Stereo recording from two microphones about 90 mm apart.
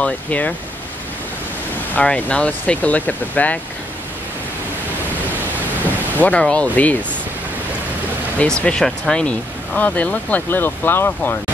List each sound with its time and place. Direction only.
0.0 s speech: 15° left (ahead or behind)
2.0 s speech: 15° left (ahead or behind)
6.2 s speech: 15° left (ahead or behind)
8.4 s speech: 10° left (ahead or behind)